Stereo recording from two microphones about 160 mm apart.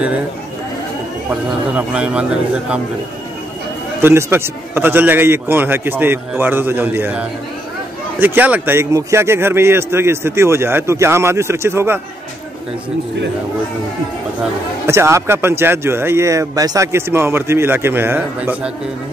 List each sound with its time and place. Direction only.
1.8 s a man's voice: 5° right (ahead or behind)
4.0 s a man's voice: 15° right (ahead or behind)
14.9 s a man's voice: 15° right (ahead or behind)